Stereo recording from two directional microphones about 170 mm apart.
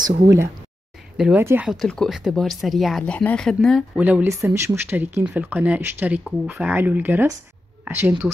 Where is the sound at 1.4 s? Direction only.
15° right (ahead or behind).